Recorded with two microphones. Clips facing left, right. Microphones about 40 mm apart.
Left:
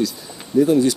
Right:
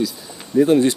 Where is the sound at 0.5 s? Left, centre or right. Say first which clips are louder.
Right 1 dB; right.